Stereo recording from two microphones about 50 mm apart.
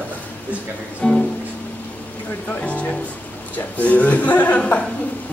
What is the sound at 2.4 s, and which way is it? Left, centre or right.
A man's voice, left.